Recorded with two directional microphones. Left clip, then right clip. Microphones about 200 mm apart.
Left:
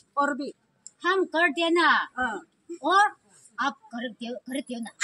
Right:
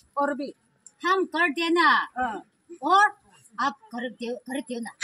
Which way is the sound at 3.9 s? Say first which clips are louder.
Right 2 dB; 10° right (ahead or behind).